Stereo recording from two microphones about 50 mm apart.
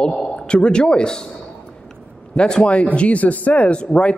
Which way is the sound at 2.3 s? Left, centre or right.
Centre.